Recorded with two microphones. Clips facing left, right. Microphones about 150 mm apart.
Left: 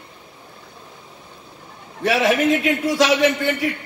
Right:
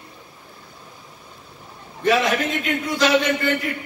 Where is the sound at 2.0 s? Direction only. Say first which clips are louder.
Left 2 dB; 80° left.